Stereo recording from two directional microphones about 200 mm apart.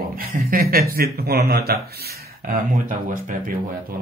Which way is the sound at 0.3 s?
45° right (ahead or behind).